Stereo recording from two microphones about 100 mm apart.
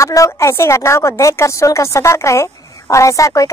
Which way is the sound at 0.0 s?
30° left (ahead or behind).